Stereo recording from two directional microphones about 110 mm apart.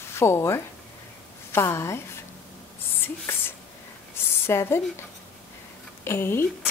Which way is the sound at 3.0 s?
20° left (ahead or behind).